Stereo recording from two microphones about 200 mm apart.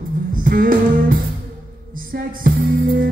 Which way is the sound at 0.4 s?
45° right (ahead or behind).